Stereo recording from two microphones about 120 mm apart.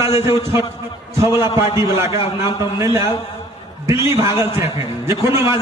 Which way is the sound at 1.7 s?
20° right (ahead or behind).